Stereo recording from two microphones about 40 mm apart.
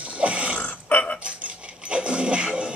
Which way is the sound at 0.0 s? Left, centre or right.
Right.